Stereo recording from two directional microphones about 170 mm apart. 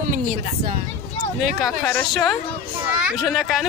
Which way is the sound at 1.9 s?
5° left (ahead or behind).